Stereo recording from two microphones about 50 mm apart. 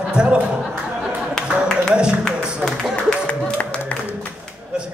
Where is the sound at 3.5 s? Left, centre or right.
Left.